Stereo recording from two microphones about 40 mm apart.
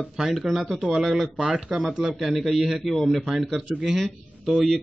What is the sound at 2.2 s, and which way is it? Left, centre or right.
A man's voice, centre.